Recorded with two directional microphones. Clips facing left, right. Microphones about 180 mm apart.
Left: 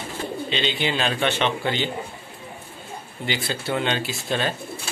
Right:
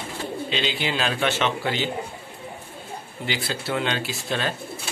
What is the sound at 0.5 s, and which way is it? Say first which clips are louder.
Speech: left 2 dB; 5° right (ahead or behind).